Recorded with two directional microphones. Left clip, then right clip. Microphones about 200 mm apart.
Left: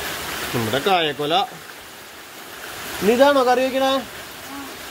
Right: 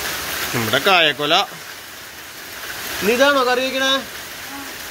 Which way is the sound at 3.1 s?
30° left (ahead or behind).